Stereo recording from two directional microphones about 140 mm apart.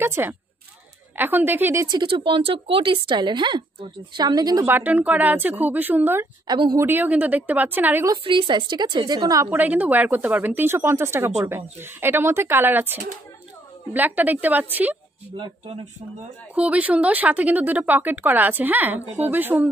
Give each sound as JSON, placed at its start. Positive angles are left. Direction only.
{"t": 0.0, "sound": "speech", "side_deg": -15}
{"t": 1.9, "sound": "a woman's voice", "side_deg": -35}
{"t": 4.6, "sound": "speech", "side_deg": -15}
{"t": 6.4, "sound": "speech", "side_deg": -30}
{"t": 6.9, "sound": "speech", "side_deg": -10}
{"t": 8.2, "sound": "a woman's voice", "side_deg": -35}
{"t": 9.6, "sound": "speech", "side_deg": -10}
{"t": 15.3, "sound": "a woman's voice", "side_deg": -35}
{"t": 16.5, "sound": "speech", "side_deg": -10}